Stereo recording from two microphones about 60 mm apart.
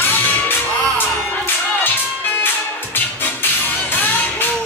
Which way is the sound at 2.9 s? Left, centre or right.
Left.